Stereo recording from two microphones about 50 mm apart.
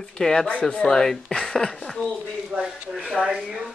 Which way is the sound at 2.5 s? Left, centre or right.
Right.